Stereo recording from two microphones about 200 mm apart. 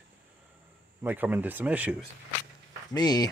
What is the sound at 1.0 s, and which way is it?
Speech, 10° right (ahead or behind).